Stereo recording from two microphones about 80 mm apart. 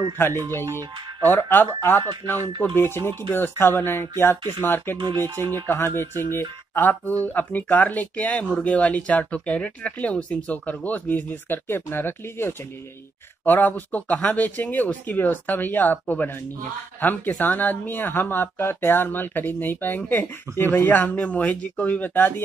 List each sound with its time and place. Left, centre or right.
0.2 s speech: left
4.9 s speech: right
5.7 s speech: left